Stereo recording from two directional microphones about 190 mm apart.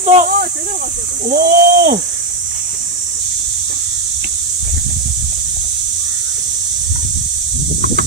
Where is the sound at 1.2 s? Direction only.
50° right (ahead or behind).